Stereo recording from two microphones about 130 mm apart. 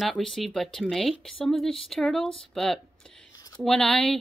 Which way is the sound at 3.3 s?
30° left (ahead or behind).